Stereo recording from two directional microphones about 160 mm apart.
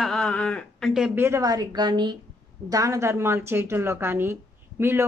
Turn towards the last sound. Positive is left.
turn(degrees=-15)  # may be behind; listen again after turning